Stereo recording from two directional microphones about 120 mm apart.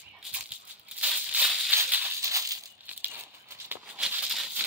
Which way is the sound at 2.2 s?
25° right (ahead or behind).